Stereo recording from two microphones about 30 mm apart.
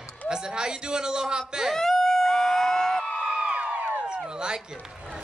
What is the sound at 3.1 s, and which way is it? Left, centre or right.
Crowd, right.